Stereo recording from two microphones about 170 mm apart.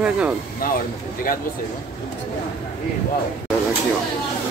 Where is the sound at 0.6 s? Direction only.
60° left (ahead or behind).